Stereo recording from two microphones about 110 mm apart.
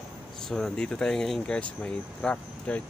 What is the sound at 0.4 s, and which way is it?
Speech, 5° left (ahead or behind).